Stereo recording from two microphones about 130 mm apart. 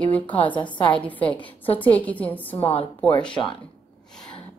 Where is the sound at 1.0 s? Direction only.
10° left (ahead or behind).